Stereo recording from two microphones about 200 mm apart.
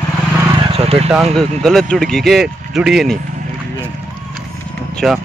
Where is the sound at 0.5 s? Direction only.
25° right (ahead or behind).